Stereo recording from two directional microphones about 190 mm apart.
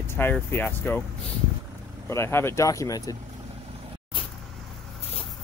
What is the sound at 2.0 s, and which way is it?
Speech, 15° left (ahead or behind).